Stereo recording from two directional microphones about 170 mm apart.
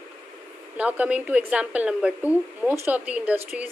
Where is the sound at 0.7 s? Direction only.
10° right (ahead or behind).